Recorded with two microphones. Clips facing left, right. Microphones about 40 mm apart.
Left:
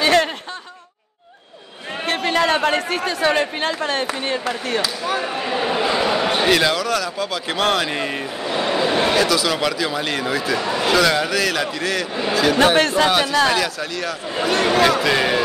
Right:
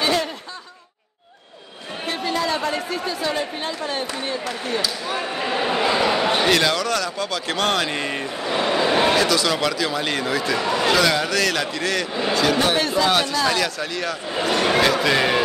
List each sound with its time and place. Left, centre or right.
0.0 s snicker: left
2.0 s a man's voice: left
5.4 s a man's voice: centre
12.7 s a man's voice: left
13.1 s a man's voice: centre